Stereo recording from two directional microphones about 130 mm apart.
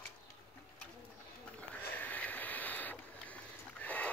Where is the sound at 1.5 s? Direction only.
10° left (ahead or behind).